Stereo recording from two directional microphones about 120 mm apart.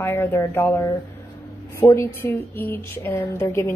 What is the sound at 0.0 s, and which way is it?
A woman's voice, 20° left (ahead or behind).